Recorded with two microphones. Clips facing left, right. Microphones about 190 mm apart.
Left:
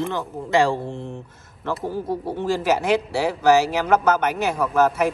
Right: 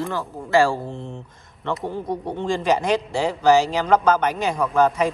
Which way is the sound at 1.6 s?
5° left (ahead or behind).